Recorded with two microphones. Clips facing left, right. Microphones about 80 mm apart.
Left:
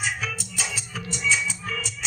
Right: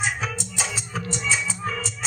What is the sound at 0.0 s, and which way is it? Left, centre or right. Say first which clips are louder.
Music: right 2 dB; right.